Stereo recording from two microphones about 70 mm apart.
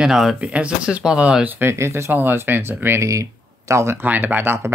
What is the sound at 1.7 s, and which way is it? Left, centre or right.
Speech, right.